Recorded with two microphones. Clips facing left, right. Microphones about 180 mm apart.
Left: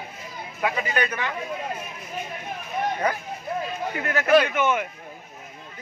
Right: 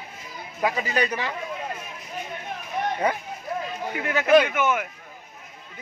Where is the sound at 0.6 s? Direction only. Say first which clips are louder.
Right 1 dB; 30° right (ahead or behind).